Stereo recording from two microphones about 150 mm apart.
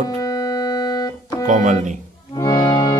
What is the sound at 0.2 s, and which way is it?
Organ, 25° left (ahead or behind).